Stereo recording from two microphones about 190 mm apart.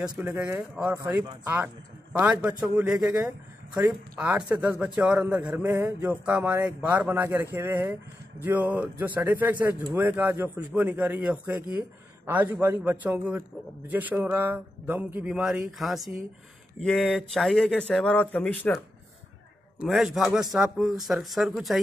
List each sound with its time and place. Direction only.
0.2 s a man's voice: 15° right (ahead or behind)
0.9 s a man's voice: 20° right (ahead or behind); by 18.8 s 10° left (ahead or behind)
19.8 s speech: centre (ahead or behind)